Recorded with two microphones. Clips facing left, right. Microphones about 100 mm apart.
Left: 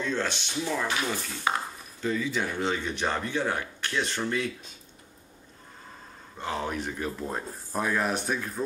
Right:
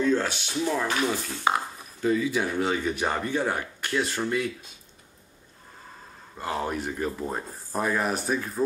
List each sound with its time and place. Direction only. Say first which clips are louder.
0.0 s speech: right 5 dB; 5° right (ahead or behind)
6.3 s speech: right 2 dB; 5° right (ahead or behind)